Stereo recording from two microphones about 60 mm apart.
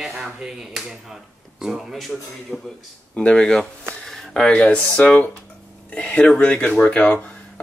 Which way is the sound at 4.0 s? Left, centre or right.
Centre.